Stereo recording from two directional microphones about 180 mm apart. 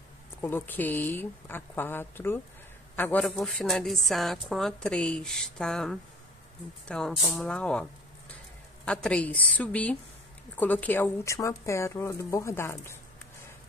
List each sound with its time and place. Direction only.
0.4 s a woman's voice: 10° left (ahead or behind)